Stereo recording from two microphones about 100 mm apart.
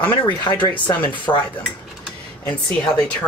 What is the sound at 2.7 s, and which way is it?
Speech, 10° left (ahead or behind).